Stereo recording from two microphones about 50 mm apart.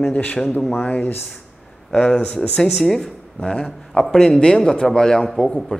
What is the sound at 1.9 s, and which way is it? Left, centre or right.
Speech, centre.